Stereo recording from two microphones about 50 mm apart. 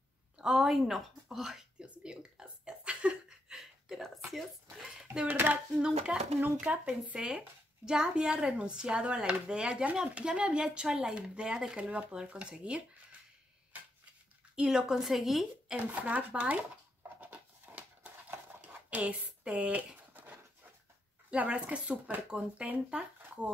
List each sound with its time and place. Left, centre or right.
0.4 s speech: centre
1.8 s a sound: centre
5.3 s speech: right
5.8 s speech: centre
7.2 s speech: centre
14.5 s speech: centre
15.7 s speech: right
17.2 s a sound: right
18.9 s speech: right
20.2 s dog: right
21.4 s speech: right